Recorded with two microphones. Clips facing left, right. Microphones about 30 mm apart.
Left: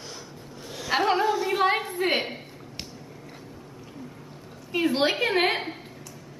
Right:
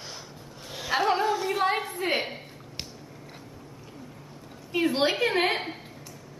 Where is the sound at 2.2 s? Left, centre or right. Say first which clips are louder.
Left 1 dB; centre.